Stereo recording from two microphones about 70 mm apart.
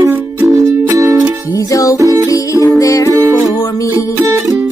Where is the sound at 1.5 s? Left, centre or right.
Left.